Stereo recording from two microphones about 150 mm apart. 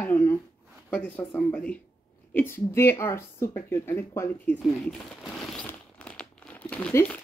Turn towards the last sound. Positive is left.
turn(degrees=10)  # may be behind; listen again after turning